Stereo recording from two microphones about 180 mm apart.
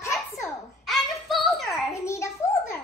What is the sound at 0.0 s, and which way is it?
Giggle, 15° left (ahead or behind).